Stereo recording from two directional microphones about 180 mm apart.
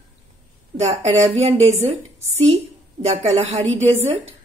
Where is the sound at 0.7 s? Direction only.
35° right (ahead or behind).